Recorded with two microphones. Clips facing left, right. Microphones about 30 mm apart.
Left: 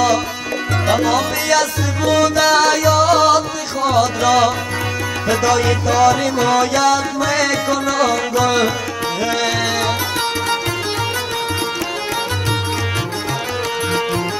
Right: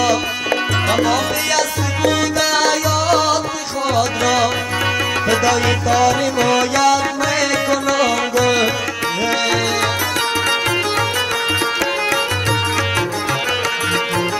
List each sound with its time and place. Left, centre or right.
0.8 s music: centre